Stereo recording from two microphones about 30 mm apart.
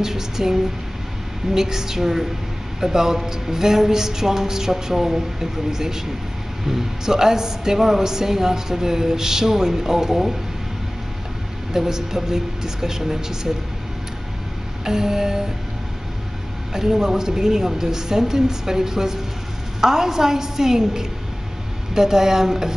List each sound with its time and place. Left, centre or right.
0.0 s speech: centre
11.7 s speech: centre
14.9 s speech: centre
16.7 s speech: centre